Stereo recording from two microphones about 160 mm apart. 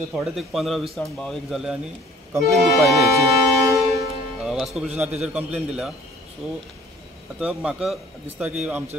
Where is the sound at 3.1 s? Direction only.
20° right (ahead or behind).